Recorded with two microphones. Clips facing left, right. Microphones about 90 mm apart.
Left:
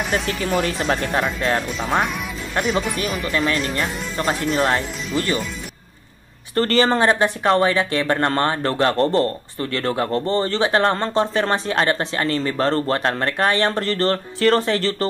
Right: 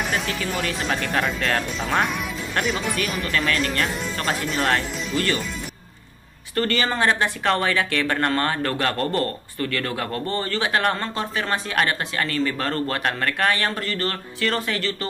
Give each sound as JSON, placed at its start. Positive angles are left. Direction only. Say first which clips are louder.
{"t": 0.0, "sound": "speech", "louder": "left 3 dB", "side_deg": 0}
{"t": 0.4, "sound": "speech", "louder": "left 6 dB", "side_deg": 50}
{"t": 0.8, "sound": "speech", "louder": "left 4 dB", "side_deg": 35}
{"t": 1.7, "sound": "speech", "louder": "left 2 dB", "side_deg": 0}
{"t": 3.3, "sound": "a man's voice", "louder": "left 3 dB", "side_deg": 20}
{"t": 3.7, "sound": "speech", "louder": "left 1 dB", "side_deg": 5}
{"t": 6.5, "sound": "speech", "louder": "left 6 dB", "side_deg": 35}
{"t": 7.0, "sound": "a man's voice", "louder": "left 4 dB", "side_deg": 20}